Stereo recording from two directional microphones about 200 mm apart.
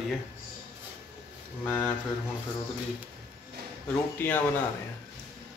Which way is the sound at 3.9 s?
10° left (ahead or behind).